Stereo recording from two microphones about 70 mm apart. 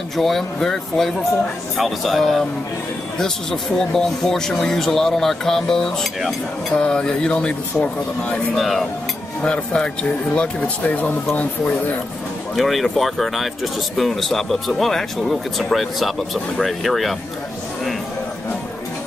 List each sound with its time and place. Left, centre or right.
0.2 s speech: centre
3.7 s speech: centre
8.5 s speech: centre
9.4 s speech: centre
12.5 s speech: centre